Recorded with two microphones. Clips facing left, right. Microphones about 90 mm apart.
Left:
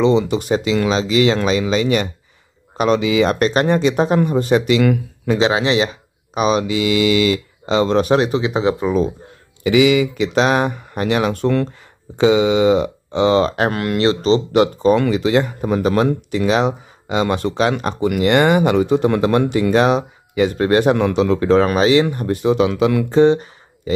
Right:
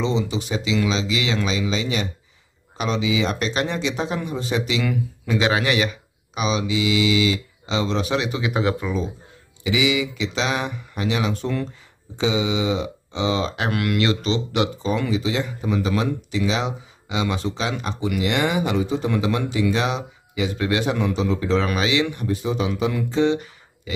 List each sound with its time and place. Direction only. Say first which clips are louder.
0.0 s speech: left 8 dB; 60° left (ahead or behind)
5.4 s speech: left 4 dB; 25° left (ahead or behind)
6.3 s speech: left 6 dB; 50° left (ahead or behind)
8.4 s speech: left 5 dB; 25° left (ahead or behind)
8.8 s speech: left 8 dB; 55° left (ahead or behind); by 14.7 s 40° left (ahead or behind)
14.8 s speech: left 8 dB; 60° left (ahead or behind); by 22.4 s 45° left (ahead or behind)
22.4 s a man's voice: left 10 dB; 75° left (ahead or behind)
23.1 s speech: left 7 dB; 40° left (ahead or behind)